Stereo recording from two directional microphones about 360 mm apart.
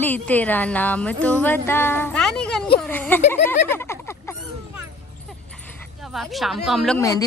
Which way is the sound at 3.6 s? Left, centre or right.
Centre.